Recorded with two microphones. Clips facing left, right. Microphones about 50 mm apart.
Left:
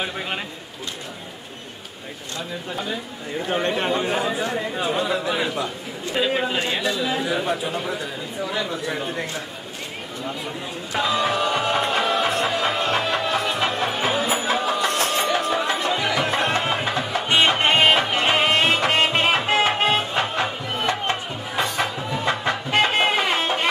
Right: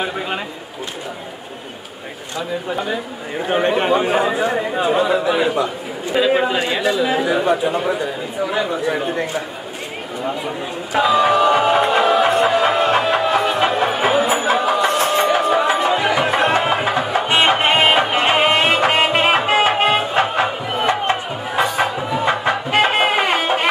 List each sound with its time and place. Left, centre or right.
2.3 s a man's voice: centre
8.9 s a man's voice: centre
11.0 s music: centre